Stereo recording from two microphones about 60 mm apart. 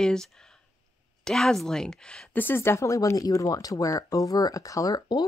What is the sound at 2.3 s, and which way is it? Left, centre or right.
Speech, left.